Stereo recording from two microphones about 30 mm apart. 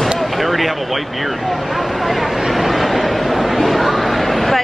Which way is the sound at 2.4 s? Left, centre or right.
Centre.